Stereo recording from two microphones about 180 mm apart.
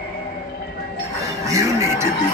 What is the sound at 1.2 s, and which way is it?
Music, 15° right (ahead or behind).